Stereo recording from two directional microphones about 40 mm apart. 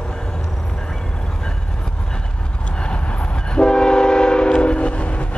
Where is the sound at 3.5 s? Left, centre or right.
Left.